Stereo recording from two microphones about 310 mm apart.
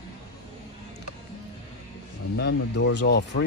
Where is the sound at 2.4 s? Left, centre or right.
Left.